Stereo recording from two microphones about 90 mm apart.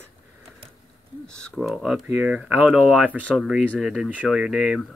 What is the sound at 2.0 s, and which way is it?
Speech, 20° right (ahead or behind).